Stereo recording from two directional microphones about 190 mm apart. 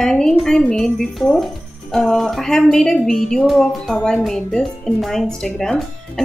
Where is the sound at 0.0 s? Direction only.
5° left (ahead or behind).